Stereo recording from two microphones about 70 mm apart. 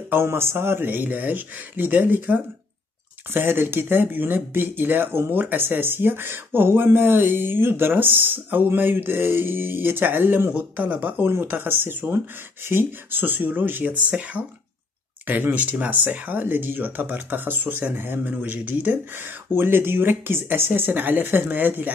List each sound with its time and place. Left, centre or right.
0.1 s speech: right
19.5 s speech: right